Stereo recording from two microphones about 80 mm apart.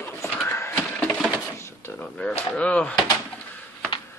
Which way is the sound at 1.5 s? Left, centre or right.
Left.